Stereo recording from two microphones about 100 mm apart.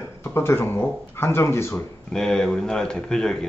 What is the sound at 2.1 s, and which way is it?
Speech, 5° left (ahead or behind).